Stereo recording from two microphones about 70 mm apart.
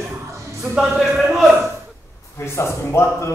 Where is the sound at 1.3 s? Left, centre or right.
Centre.